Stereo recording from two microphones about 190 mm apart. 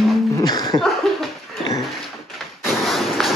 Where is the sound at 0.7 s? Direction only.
Centre (ahead or behind).